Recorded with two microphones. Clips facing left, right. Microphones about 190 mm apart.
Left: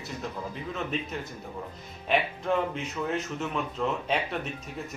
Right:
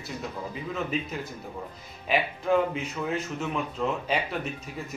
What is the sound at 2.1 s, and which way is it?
A man's voice, 5° right (ahead or behind).